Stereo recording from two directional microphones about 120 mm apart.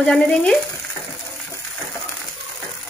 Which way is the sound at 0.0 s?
5° left (ahead or behind).